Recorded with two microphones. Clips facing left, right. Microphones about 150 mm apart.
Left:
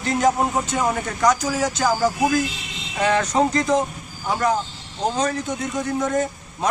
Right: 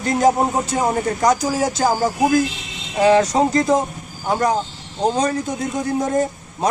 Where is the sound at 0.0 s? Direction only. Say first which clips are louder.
Right 3 dB; 40° right (ahead or behind).